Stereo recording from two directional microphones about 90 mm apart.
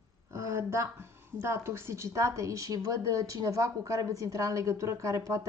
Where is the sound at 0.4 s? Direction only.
35° right (ahead or behind).